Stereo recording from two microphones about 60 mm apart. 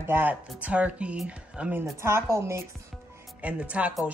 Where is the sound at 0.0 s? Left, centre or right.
Right.